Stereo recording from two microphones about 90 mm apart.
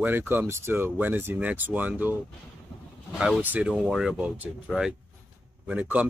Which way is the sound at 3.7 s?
5° right (ahead or behind).